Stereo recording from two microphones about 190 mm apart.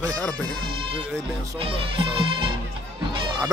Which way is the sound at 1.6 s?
30° right (ahead or behind).